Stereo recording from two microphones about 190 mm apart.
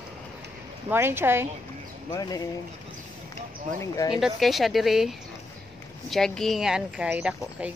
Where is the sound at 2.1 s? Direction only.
20° left (ahead or behind).